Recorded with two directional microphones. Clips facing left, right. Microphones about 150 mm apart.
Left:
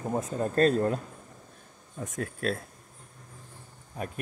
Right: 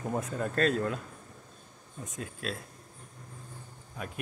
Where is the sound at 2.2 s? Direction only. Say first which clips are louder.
Left 7 dB; 55° left (ahead or behind).